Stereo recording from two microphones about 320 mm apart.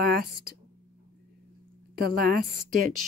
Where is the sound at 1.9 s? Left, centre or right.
Right.